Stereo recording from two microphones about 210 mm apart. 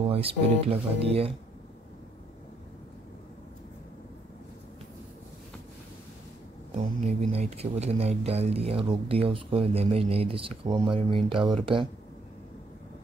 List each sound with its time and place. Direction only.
0.0 s speech: 25° right (ahead or behind)
6.7 s speech: 30° right (ahead or behind)